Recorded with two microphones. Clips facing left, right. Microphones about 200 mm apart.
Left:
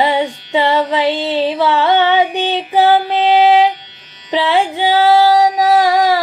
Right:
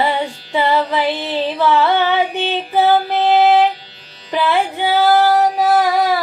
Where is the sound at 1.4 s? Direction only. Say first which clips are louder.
Even; 15° left (ahead or behind).